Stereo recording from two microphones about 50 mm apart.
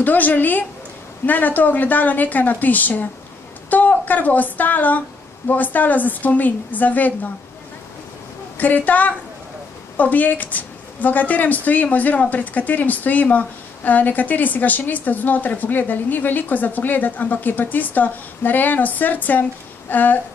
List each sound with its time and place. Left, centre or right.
0.0 s a woman's voice: left
8.5 s a woman's voice: left